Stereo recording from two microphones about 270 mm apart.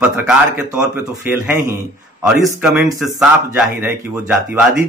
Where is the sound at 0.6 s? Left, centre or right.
Centre.